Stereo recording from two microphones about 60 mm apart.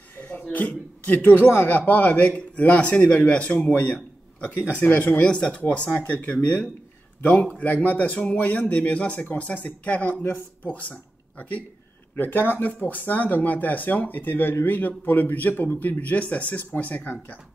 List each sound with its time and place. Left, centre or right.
0.2 s a man's voice: left